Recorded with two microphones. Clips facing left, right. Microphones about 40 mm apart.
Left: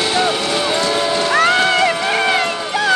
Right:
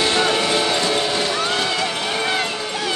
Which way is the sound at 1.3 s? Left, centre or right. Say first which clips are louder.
Left 8 dB; left.